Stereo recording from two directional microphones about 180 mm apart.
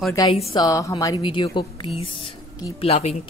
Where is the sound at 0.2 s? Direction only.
20° left (ahead or behind).